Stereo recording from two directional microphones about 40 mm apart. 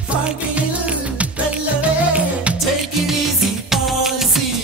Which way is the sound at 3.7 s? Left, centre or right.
Centre.